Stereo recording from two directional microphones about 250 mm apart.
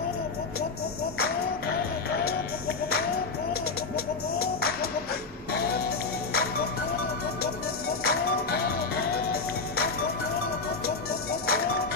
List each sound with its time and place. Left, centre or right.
2.0 s music: left
3.9 s music: left
8.0 s music: left
11.4 s music: left